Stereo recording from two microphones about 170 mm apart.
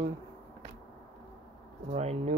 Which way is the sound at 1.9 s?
40° right (ahead or behind).